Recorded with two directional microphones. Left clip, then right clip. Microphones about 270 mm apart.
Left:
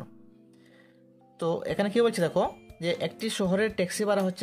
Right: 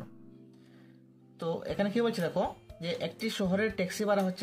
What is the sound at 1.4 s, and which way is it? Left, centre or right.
Speech, left.